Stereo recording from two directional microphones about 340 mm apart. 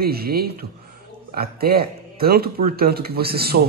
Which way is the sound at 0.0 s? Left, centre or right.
Right.